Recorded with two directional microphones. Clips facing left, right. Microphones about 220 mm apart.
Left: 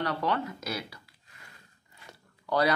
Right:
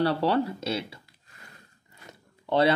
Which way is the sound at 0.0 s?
30° right (ahead or behind).